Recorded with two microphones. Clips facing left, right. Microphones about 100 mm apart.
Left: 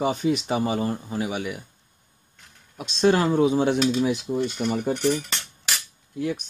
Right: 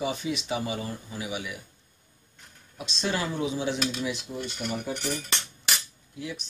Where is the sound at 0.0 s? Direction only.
50° left (ahead or behind).